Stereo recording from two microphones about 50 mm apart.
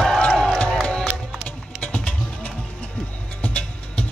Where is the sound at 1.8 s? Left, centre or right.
Left.